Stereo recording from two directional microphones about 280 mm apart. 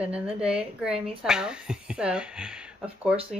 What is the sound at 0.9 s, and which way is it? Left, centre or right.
Speech, centre.